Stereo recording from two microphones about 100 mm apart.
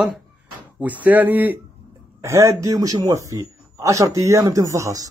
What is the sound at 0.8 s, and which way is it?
Speech, 15° right (ahead or behind).